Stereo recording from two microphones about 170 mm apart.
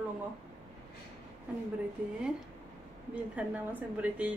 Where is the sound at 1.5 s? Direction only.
5° right (ahead or behind).